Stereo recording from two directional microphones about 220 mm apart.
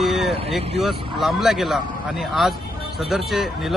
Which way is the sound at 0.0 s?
Centre (ahead or behind).